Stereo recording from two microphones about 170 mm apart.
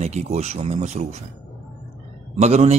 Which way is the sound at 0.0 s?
40° right (ahead or behind).